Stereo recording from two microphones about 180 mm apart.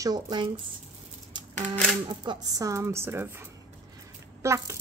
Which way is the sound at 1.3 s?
25° right (ahead or behind).